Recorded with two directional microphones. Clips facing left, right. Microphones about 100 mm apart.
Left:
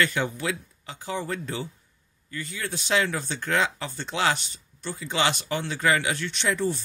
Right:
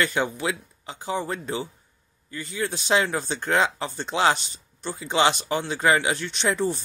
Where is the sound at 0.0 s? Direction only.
25° right (ahead or behind).